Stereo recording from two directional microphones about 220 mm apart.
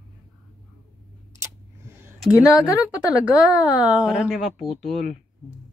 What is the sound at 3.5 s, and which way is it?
Speech, 5° right (ahead or behind).